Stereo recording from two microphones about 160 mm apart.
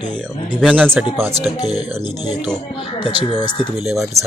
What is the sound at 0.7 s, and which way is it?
Speech, 10° right (ahead or behind).